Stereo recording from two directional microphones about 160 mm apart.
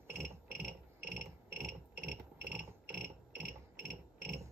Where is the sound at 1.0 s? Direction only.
75° right (ahead or behind).